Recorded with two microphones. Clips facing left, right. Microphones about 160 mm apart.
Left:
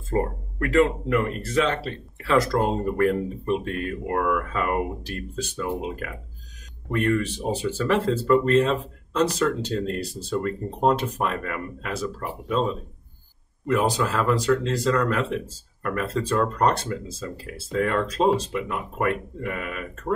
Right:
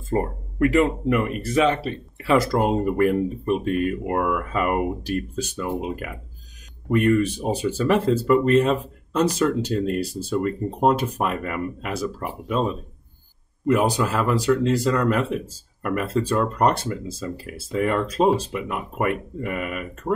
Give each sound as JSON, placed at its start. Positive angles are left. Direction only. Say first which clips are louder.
{"t": 0.1, "sound": "speech", "louder": "right 1 dB", "side_deg": -10}
{"t": 13.7, "sound": "speech", "louder": "left 1 dB", "side_deg": -10}